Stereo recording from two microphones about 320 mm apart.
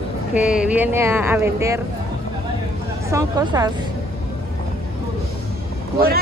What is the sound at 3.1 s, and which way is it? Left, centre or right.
Speech, centre.